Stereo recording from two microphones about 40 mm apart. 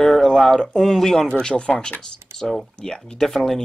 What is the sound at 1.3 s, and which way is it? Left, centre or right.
Speech, left.